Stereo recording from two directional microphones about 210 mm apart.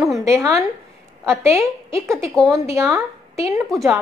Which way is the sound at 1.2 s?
15° right (ahead or behind).